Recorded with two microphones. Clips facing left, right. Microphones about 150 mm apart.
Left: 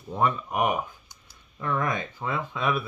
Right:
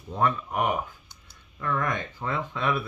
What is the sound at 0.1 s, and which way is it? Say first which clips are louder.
Speech: even; 15° left (ahead or behind).